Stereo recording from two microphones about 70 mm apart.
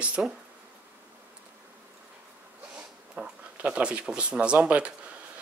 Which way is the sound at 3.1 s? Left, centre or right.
Centre.